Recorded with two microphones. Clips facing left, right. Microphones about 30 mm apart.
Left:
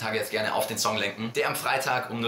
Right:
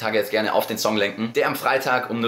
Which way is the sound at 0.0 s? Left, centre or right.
Right.